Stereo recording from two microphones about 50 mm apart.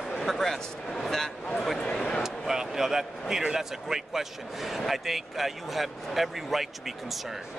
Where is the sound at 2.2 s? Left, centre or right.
Centre.